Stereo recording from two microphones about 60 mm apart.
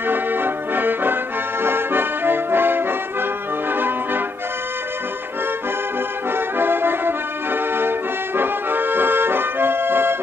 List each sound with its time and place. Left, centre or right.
0.0 s accordion: right
3.7 s music: right
6.3 s music: right
8.4 s accordion: right